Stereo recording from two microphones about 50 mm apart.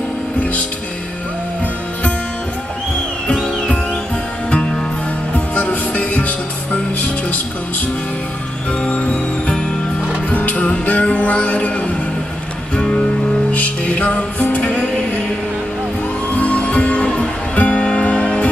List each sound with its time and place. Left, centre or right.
3.3 s music: left
8.8 s music: left
16.3 s music: left